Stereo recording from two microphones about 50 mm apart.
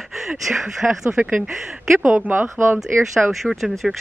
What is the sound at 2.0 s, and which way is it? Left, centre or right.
Speech, right.